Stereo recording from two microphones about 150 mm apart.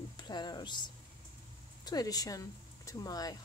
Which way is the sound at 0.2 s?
30° left (ahead or behind).